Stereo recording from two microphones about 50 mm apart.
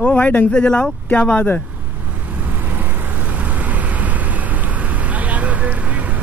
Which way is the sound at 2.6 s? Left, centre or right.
Right.